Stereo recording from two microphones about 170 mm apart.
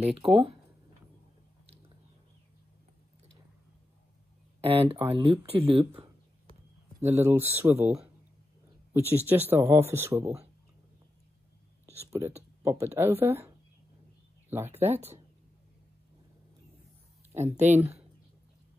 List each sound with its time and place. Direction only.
0.0 s speech: 35° right (ahead or behind)
4.6 s speech: 35° right (ahead or behind)
7.0 s speech: 15° right (ahead or behind)
11.8 s speech: 15° right (ahead or behind)
14.8 s speech: 10° right (ahead or behind)
17.6 s speech: 10° right (ahead or behind)